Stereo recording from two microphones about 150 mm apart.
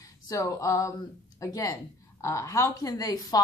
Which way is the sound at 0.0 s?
20° left (ahead or behind).